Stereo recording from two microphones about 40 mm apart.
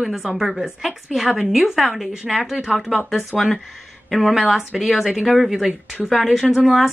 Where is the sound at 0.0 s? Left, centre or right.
Centre.